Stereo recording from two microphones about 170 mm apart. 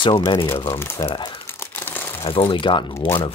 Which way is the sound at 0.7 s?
15° left (ahead or behind).